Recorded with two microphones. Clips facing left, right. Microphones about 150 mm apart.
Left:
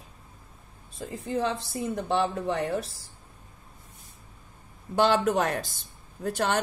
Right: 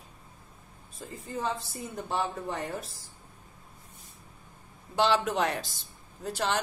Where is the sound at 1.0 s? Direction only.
90° left.